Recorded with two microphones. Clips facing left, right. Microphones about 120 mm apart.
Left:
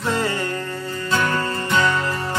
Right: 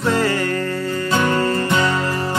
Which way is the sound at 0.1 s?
25° left (ahead or behind).